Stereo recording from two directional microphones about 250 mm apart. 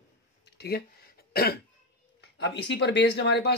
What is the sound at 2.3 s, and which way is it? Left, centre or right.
Speech, left.